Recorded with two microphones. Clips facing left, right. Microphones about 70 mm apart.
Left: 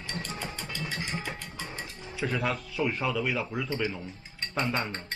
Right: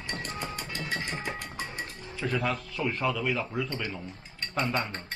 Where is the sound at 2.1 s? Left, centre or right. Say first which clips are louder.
Even; centre.